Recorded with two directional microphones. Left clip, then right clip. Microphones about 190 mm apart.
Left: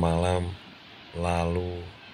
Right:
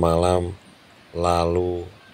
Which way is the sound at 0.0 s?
20° right (ahead or behind).